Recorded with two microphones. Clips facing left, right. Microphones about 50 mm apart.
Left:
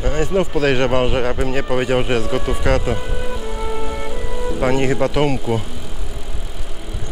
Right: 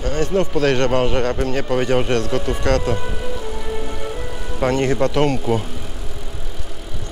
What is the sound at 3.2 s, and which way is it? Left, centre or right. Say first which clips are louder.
Music: left 1 dB; centre.